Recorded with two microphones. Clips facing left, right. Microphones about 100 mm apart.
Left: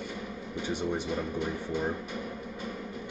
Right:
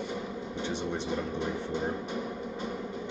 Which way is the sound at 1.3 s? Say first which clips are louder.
Even; 20° right (ahead or behind).